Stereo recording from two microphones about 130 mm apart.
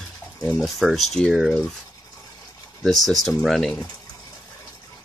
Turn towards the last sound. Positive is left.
turn(degrees=5)  # may be behind; listen again after turning